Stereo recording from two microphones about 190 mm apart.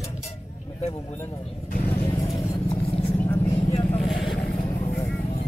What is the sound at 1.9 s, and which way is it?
Vehicle, 25° left (ahead or behind).